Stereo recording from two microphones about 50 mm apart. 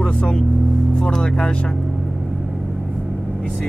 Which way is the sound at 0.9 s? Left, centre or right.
Centre.